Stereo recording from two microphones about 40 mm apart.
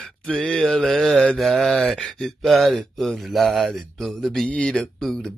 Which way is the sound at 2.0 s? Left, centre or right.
Centre.